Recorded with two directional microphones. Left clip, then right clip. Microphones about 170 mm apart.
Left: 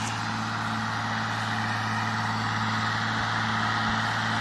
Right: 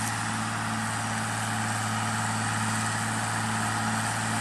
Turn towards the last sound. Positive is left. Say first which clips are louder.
# left 3 dB
turn(degrees=-10)  # may be behind; listen again after turning